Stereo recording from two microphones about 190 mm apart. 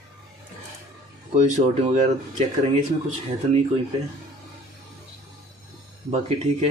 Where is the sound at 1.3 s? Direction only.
35° right (ahead or behind).